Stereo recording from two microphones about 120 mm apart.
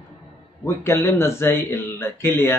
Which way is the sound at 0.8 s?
20° left (ahead or behind).